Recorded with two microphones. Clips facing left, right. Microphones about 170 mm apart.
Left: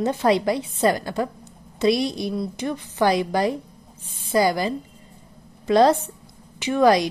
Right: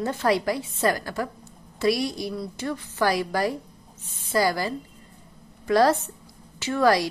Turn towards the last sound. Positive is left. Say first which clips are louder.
# left 4 dB
turn(degrees=20)  # may be behind; listen again after turning